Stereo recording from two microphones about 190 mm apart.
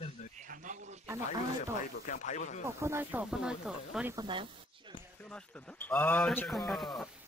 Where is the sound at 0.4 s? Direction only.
40° right (ahead or behind).